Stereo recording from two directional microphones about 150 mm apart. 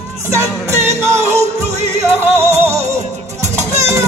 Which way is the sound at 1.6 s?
50° right (ahead or behind).